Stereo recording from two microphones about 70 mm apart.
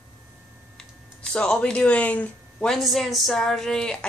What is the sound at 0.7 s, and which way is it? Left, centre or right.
Speech, centre.